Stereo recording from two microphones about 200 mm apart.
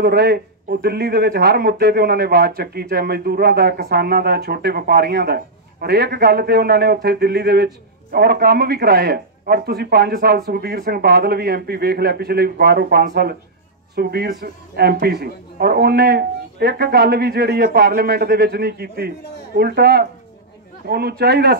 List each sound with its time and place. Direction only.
0.0 s a man's voice: 55° right (ahead or behind)